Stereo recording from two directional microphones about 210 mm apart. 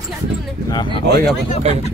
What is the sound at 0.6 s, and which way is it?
Speech, 20° left (ahead or behind).